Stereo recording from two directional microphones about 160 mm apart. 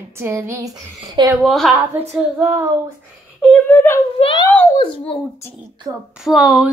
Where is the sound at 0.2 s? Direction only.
15° right (ahead or behind).